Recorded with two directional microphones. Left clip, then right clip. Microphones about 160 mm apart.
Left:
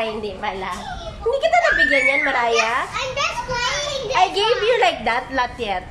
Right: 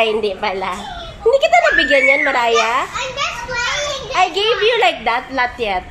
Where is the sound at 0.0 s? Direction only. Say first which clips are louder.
Right 8 dB; 15° right (ahead or behind).